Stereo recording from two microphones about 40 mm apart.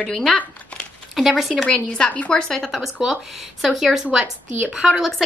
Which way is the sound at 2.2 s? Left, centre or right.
Centre.